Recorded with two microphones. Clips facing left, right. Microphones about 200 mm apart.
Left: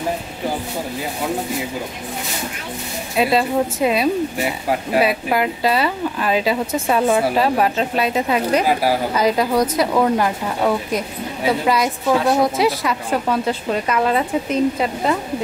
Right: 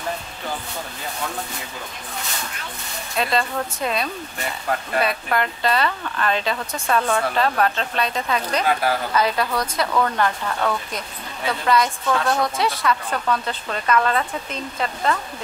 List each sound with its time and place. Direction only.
1.2 s speech: 10° left (ahead or behind)
3.2 s speech: 5° left (ahead or behind)
9.8 s speech: 25° left (ahead or behind)
10.1 s speech: 10° left (ahead or behind)